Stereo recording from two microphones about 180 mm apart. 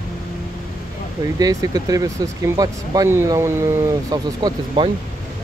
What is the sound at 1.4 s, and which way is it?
Speech, 20° right (ahead or behind).